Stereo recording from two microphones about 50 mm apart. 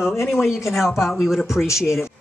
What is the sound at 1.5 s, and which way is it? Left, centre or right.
Speech, left.